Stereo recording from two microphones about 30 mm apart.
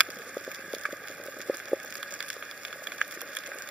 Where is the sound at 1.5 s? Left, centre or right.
Centre.